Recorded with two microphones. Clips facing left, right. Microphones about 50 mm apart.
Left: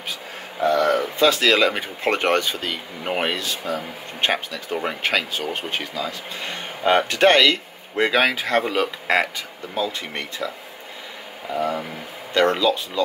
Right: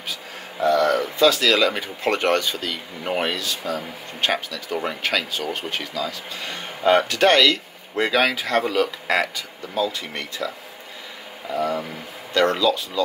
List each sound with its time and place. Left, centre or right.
0.6 s a sound: left
1.8 s speech: left
10.4 s speech: centre
11.5 s speech: centre